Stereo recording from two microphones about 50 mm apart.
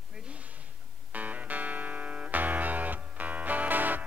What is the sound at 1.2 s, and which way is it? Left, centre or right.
Music, right.